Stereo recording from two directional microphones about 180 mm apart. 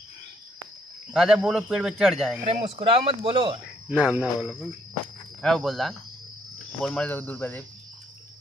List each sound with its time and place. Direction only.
1.1 s a man's voice: 5° right (ahead or behind)
2.4 s speech: 30° right (ahead or behind)
3.9 s a man's voice: 5° right (ahead or behind); by 7.6 s 10° left (ahead or behind)